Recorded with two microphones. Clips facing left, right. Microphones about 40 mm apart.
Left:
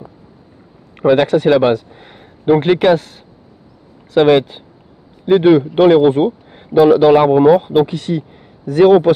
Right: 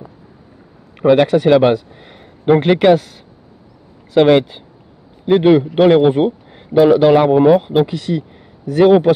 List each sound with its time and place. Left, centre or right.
0.9 s speech: centre
2.0 s a sound: centre
2.5 s speech: centre
3.0 s speech: left
4.1 s speech: centre
7.8 s speech: left
8.8 s speech: centre